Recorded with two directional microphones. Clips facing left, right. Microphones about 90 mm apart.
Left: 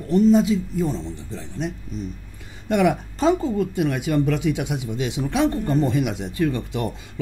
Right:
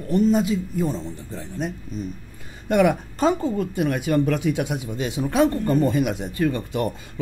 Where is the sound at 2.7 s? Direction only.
45° right (ahead or behind).